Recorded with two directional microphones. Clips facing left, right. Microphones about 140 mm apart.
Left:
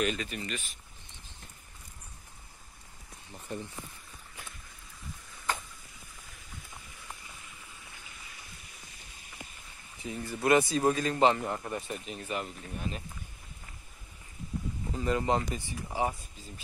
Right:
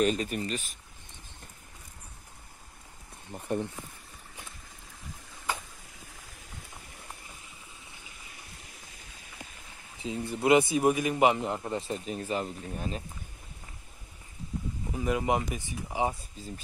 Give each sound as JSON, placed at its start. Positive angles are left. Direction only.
{"t": 0.0, "sound": "speech", "side_deg": -40}
{"t": 3.3, "sound": "speech", "side_deg": -55}
{"t": 5.5, "sound": "a sound", "side_deg": -10}
{"t": 10.0, "sound": "a man's voice", "side_deg": -20}
{"t": 12.0, "sound": "speech", "side_deg": -35}
{"t": 14.9, "sound": "speech", "side_deg": -10}